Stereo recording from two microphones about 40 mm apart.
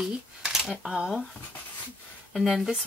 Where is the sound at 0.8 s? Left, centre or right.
Centre.